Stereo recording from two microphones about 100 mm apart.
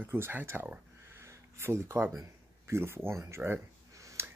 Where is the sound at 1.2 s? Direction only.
25° right (ahead or behind).